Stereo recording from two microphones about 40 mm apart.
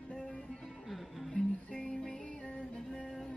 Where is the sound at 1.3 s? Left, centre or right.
Centre.